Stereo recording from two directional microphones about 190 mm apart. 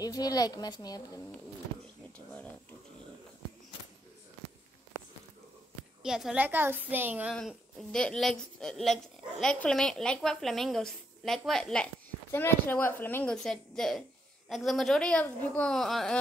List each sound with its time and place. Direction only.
0.0 s a woman's voice: 20° left (ahead or behind)
6.0 s a woman's voice: 5° right (ahead or behind)
7.3 s a woman's voice: 5° left (ahead or behind)